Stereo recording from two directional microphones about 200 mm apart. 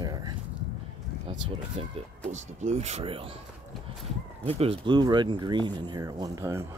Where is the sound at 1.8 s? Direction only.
30° right (ahead or behind).